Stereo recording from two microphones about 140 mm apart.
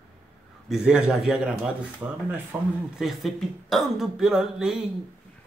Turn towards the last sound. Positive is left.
turn(degrees=-5)  # may be behind; listen again after turning